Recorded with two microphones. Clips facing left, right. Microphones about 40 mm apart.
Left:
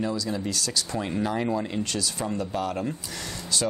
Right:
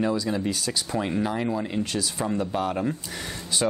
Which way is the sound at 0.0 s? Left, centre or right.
Centre.